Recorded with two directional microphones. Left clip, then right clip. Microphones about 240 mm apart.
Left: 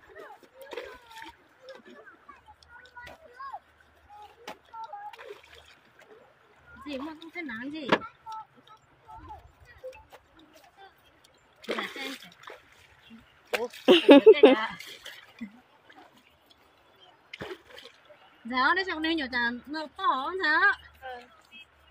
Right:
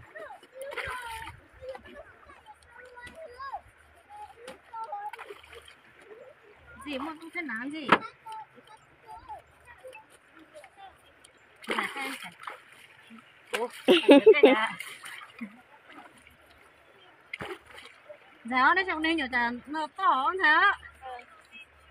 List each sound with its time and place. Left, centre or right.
0.7 s splash: centre
3.4 s splash: right
4.5 s a sound: left
7.0 s a woman's voice: centre
11.6 s splash: centre
13.8 s speech: centre
17.3 s splash: centre
18.5 s a woman's voice: centre
21.0 s a sound: left